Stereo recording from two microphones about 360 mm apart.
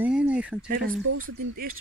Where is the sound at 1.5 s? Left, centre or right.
Right.